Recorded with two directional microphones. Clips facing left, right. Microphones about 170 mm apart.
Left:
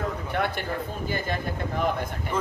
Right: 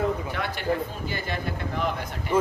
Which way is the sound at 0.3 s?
55° left (ahead or behind).